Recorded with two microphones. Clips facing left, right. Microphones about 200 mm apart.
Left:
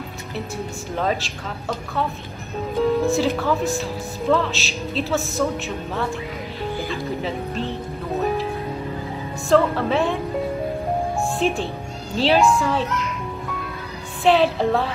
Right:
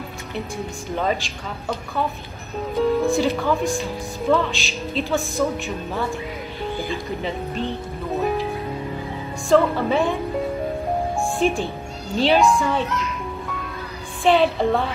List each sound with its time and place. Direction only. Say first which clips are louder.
2.7 s speech: even; centre (ahead or behind)
7.2 s speech: even; centre (ahead or behind)
9.5 s speech: right 1 dB; centre (ahead or behind)
11.1 s music: right 1 dB; centre (ahead or behind)
12.2 s speech: even; centre (ahead or behind)
14.2 s speech: even; centre (ahead or behind)